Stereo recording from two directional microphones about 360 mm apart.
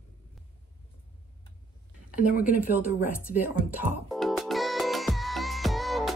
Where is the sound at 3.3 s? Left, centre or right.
Centre.